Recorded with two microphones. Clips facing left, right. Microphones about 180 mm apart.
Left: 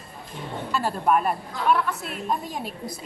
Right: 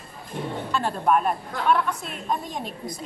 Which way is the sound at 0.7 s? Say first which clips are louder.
Even; 5° left (ahead or behind).